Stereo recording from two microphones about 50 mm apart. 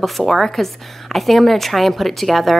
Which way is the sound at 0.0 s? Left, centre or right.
Centre.